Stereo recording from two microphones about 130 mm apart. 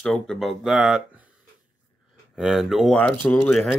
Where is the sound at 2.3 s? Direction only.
5° right (ahead or behind).